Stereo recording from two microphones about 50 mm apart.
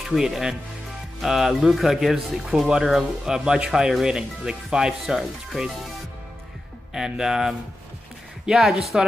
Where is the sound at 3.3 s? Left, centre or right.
Centre.